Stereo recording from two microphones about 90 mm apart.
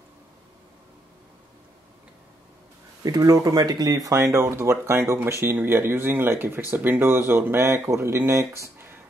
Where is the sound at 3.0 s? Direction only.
45° right (ahead or behind).